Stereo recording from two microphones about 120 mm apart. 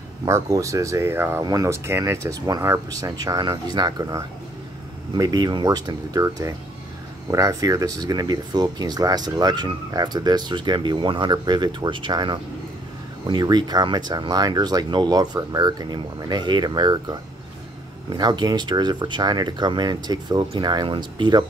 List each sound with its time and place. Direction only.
0.2 s speech: 30° right (ahead or behind)